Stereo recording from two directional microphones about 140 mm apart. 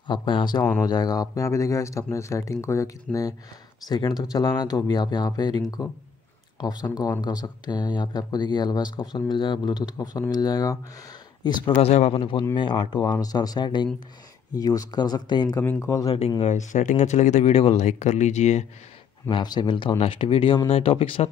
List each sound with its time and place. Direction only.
0.0 s speech: 35° left (ahead or behind)
11.9 s speech: 45° left (ahead or behind); by 15.6 s 30° left (ahead or behind)
15.6 s speech: 15° left (ahead or behind)
16.3 s speech: 55° left (ahead or behind)
17.6 s speech: 50° left (ahead or behind)
19.2 s speech: 30° left (ahead or behind)